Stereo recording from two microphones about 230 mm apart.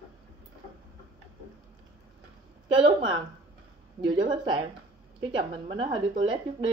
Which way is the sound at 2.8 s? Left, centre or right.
Right.